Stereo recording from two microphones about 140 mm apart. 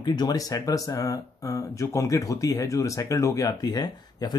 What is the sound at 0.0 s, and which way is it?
Speech, 30° left (ahead or behind).